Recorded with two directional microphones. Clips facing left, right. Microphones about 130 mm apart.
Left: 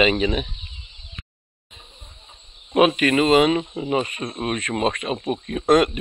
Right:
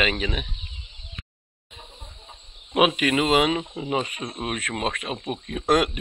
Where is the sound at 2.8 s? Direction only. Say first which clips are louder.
Left 4 dB; 10° right (ahead or behind).